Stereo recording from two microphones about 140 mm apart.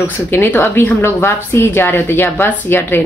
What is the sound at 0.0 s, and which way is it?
A woman's voice, 15° left (ahead or behind).